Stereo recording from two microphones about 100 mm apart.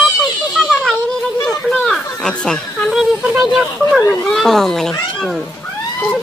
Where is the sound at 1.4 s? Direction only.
10° left (ahead or behind).